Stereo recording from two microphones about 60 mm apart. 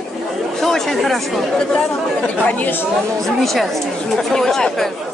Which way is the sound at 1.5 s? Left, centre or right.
Centre.